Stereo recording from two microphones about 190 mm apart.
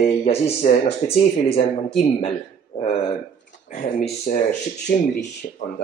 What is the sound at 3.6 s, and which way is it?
Speech, 35° left (ahead or behind).